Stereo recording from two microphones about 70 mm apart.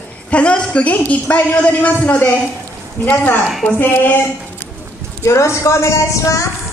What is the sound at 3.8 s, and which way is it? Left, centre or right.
Speech, left.